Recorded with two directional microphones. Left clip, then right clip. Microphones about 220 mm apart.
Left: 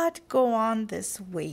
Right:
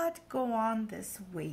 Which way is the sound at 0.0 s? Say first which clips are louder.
Left 9 dB; 50° left (ahead or behind).